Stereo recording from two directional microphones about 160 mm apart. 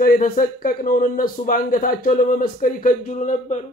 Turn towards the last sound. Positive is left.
turn(degrees=50)  # may be behind; listen again after turning